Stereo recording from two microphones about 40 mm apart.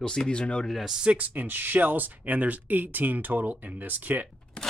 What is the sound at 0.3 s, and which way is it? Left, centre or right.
Speech, left.